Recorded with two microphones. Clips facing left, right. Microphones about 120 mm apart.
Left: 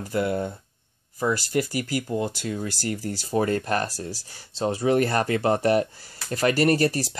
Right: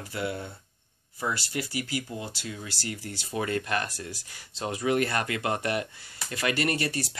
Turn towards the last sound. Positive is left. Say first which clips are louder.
# left 8 dB
turn(degrees=40)  # may be behind; listen again after turning